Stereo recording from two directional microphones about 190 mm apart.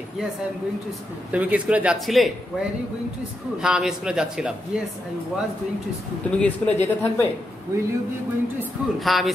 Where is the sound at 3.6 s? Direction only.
5° right (ahead or behind).